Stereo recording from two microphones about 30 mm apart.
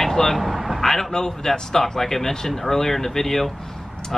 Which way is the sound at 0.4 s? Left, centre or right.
Centre.